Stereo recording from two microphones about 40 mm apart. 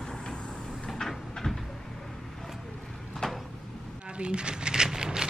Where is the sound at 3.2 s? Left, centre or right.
Centre.